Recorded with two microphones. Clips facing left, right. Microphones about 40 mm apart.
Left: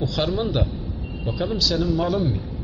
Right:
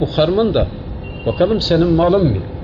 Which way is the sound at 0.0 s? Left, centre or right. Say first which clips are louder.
Right 9 dB; right.